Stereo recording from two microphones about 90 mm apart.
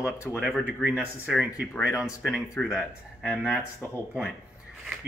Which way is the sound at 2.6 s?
15° left (ahead or behind).